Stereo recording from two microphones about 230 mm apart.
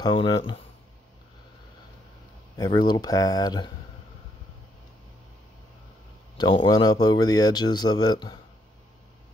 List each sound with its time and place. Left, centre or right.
0.0 s speech: centre
2.5 s speech: centre
6.3 s speech: centre